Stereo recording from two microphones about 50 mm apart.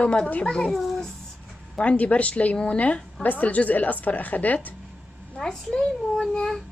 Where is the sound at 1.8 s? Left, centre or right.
Left.